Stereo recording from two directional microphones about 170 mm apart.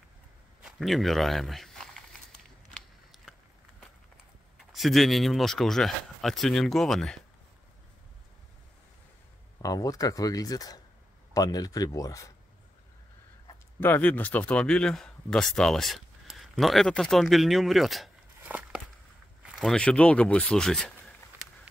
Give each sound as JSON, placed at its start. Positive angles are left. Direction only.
{"t": 0.7, "sound": "speech", "side_deg": 0}
{"t": 2.7, "sound": "biting", "side_deg": 0}
{"t": 4.6, "sound": "speech", "side_deg": 0}
{"t": 9.6, "sound": "speech", "side_deg": 20}
{"t": 13.7, "sound": "speech", "side_deg": 10}